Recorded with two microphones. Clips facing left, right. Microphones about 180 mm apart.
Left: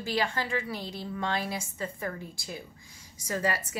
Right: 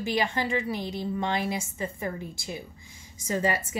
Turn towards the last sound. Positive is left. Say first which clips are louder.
# right 3 dB
turn(degrees=-20)  # may be behind; listen again after turning